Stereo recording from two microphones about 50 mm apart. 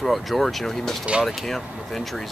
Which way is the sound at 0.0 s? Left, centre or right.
Centre.